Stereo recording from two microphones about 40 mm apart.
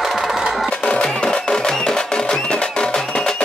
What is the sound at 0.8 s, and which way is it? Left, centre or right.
Music, left.